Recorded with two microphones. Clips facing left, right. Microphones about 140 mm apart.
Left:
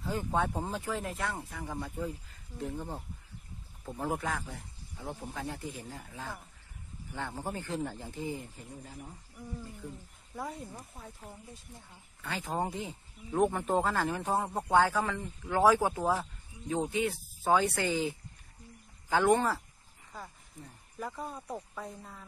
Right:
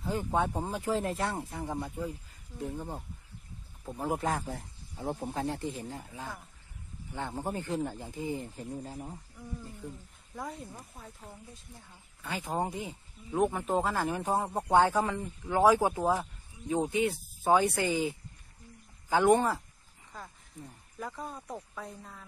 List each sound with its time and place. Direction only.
0.0 s speech: 15° right (ahead or behind)
0.8 s speech: 30° right (ahead or behind); by 4.2 s 10° right (ahead or behind)
4.2 s speech: 35° right (ahead or behind)
10.3 s speech: 5° left (ahead or behind)
12.2 s speech: 15° right (ahead or behind)
13.3 s speech: 5° right (ahead or behind)
13.9 s speech: 15° right (ahead or behind)
21.0 s speech: 5° left (ahead or behind)